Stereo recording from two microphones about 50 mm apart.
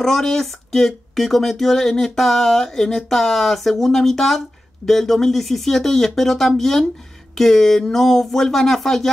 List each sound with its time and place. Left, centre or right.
0.0 s speech: centre